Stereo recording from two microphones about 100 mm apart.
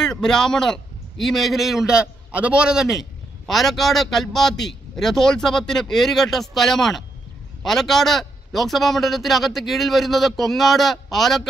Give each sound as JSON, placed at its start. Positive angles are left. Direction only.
{"t": 0.1, "sound": "a man's voice", "side_deg": 5}